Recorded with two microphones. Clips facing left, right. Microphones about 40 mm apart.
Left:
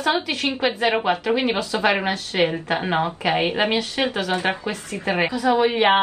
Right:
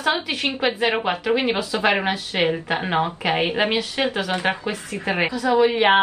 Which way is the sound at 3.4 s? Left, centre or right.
Centre.